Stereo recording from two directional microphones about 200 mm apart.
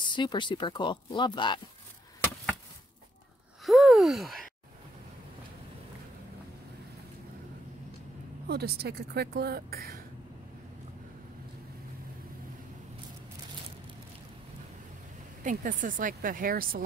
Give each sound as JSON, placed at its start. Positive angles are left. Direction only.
{"t": 0.0, "sound": "speech", "side_deg": 25}
{"t": 3.6, "sound": "a sound", "side_deg": 0}
{"t": 8.5, "sound": "a woman's voice", "side_deg": -55}
{"t": 15.4, "sound": "a woman's voice", "side_deg": -40}